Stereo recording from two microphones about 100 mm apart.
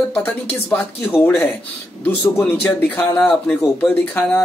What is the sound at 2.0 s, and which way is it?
Speech, 20° left (ahead or behind).